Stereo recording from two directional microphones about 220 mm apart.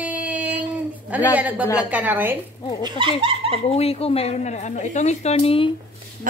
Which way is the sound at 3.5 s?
25° left (ahead or behind).